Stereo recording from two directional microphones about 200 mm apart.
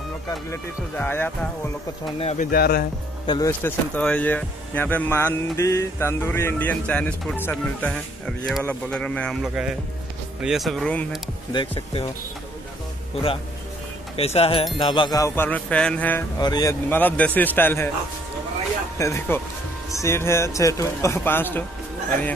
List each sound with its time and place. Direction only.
0.3 s speech: 10° left (ahead or behind)
2.1 s speech: 30° left (ahead or behind)
2.5 s speech: 50° left (ahead or behind)
3.3 s speech: 15° left (ahead or behind)
11.5 s speech: 25° left (ahead or behind)
14.1 s speech: 30° left (ahead or behind); by 16.3 s 10° left (ahead or behind)
16.3 s speech: 20° left (ahead or behind)
18.9 s speech: 15° left (ahead or behind)